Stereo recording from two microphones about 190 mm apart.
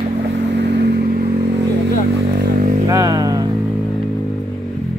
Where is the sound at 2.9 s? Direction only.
20° right (ahead or behind).